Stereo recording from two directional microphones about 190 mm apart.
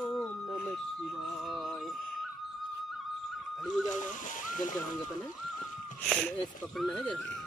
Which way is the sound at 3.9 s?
40° left (ahead or behind).